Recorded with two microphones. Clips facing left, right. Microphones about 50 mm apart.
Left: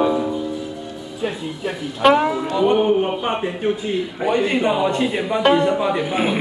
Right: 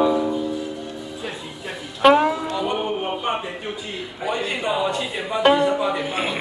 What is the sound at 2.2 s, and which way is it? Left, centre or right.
Speech, centre.